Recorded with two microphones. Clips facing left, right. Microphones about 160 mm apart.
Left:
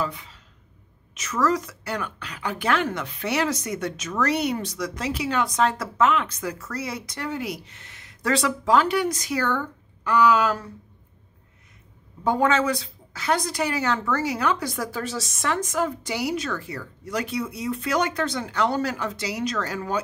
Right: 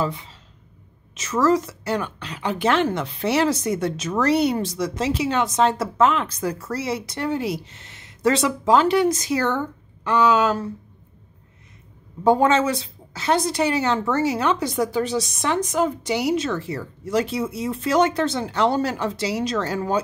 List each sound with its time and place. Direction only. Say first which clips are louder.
0.0 s speech: right 4 dB; 30° right (ahead or behind)
12.2 s speech: right 4 dB; 30° right (ahead or behind)